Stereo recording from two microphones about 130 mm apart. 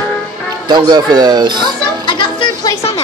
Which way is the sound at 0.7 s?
30° right (ahead or behind).